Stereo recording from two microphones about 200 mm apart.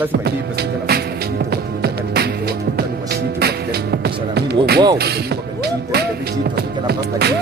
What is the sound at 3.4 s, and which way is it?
Music, 50° right (ahead or behind).